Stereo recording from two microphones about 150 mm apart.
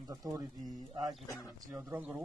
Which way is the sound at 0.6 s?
Centre (ahead or behind).